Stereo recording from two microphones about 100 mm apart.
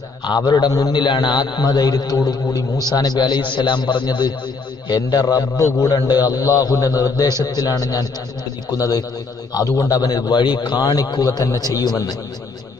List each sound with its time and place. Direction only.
0.2 s a man's voice: 45° left (ahead or behind)